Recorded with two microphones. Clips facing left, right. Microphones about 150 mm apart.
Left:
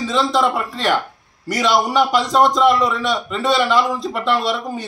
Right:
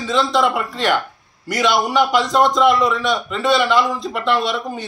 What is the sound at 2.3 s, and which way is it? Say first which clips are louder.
A man's voice: left 1 dB; centre (ahead or behind).